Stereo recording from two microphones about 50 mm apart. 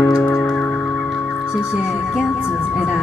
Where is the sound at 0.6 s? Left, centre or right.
Left.